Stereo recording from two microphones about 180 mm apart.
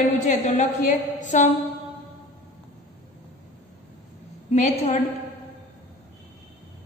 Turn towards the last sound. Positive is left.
turn(degrees=40)  # may be behind; listen again after turning